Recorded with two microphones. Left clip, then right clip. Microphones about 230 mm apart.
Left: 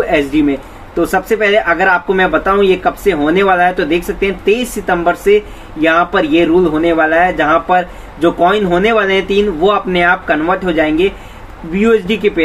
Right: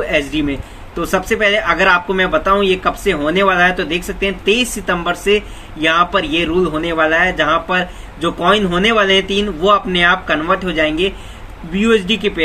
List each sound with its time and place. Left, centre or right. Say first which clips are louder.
0.3 s speech: left 6 dB; right